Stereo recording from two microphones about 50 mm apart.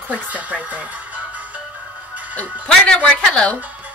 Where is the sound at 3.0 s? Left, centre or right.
Left.